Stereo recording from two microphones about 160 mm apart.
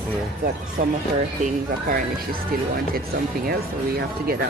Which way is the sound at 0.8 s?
60° right (ahead or behind).